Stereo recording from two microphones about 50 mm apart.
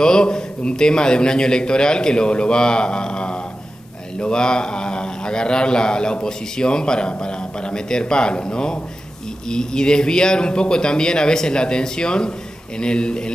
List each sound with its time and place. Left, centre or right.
0.0 s a man's voice: centre